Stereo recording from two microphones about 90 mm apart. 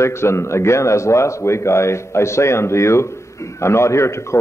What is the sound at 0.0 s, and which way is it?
A man's voice, 30° left (ahead or behind).